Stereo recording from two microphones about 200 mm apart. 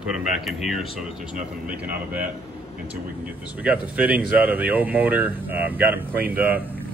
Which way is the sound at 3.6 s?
5° right (ahead or behind).